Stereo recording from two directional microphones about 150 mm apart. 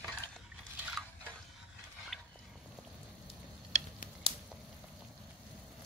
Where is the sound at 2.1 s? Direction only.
Centre (ahead or behind).